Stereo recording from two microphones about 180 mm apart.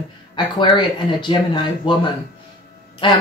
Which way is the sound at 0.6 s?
25° left (ahead or behind).